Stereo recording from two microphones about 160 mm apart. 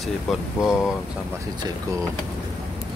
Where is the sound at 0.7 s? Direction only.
5° right (ahead or behind).